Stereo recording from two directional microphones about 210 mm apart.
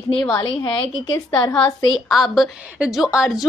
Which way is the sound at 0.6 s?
20° left (ahead or behind).